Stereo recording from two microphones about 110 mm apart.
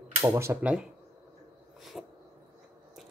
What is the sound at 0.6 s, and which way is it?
Speech, 10° right (ahead or behind).